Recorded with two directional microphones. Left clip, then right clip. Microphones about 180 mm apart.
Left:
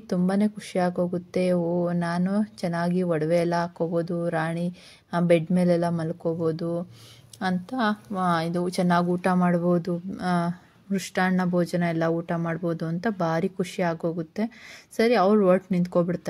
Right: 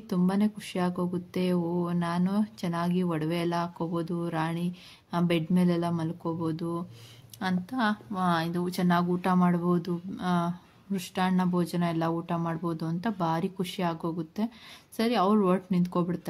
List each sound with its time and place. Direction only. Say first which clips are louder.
0.1 s a woman's voice: left 4 dB; 20° left (ahead or behind)